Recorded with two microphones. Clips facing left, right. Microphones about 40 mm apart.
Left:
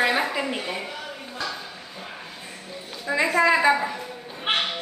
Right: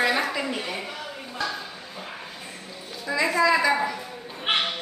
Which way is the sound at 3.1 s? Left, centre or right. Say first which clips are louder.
Left 1 dB; left.